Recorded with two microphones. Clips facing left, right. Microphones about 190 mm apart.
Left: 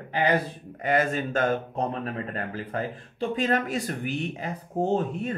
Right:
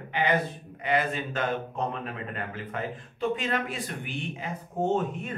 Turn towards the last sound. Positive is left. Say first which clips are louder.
# left 2 dB
turn(degrees=35)  # may be behind; listen again after turning